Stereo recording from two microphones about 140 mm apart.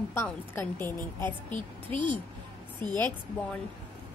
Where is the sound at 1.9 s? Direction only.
35° right (ahead or behind).